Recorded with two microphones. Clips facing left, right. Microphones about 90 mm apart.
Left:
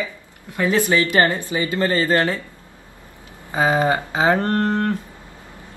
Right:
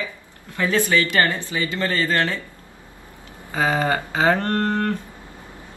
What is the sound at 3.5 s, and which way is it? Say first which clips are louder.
A woman's voice: left 3 dB; 20° left (ahead or behind).